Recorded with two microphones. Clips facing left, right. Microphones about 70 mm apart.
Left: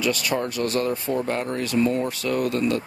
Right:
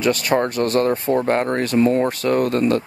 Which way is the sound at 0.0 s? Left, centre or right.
Right.